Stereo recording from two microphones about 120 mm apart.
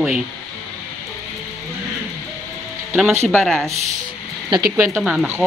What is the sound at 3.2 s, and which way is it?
Speech, 5° left (ahead or behind).